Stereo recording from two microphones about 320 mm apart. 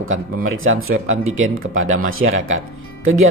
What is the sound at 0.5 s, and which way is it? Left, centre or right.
Speech, right.